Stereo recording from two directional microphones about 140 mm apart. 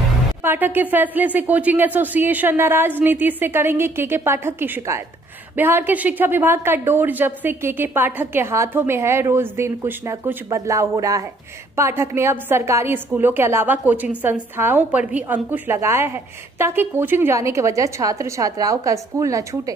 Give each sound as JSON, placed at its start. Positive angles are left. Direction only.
{"t": 0.4, "sound": "a woman's voice", "side_deg": -15}